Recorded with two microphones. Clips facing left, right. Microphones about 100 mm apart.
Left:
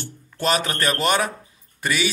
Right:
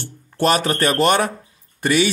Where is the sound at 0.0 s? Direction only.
55° right (ahead or behind).